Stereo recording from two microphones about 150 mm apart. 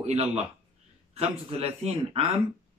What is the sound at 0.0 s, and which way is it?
Speech, 45° right (ahead or behind).